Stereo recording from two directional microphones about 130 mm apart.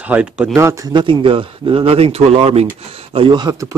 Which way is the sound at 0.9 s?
40° right (ahead or behind).